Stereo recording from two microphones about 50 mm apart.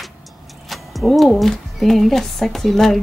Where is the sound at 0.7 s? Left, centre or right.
Centre.